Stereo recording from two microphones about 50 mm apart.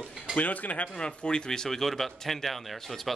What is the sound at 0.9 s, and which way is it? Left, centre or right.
A man's voice, centre.